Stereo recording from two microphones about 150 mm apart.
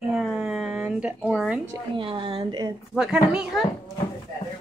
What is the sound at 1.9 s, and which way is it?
Speech, 30° right (ahead or behind).